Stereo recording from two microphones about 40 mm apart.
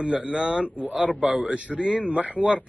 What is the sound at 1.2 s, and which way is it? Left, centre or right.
Speech, right.